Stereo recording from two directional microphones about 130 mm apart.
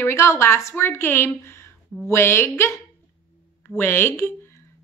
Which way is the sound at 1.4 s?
20° left (ahead or behind).